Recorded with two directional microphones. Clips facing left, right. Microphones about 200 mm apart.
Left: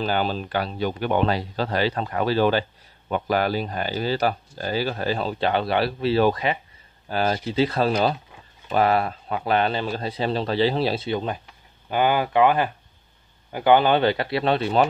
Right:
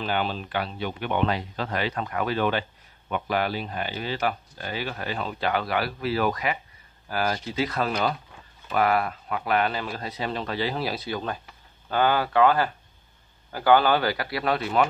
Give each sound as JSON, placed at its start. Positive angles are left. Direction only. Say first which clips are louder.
{"t": 0.0, "sound": "speech", "louder": "left 4 dB", "side_deg": 40}